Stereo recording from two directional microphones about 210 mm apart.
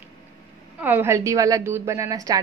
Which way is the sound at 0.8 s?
10° right (ahead or behind).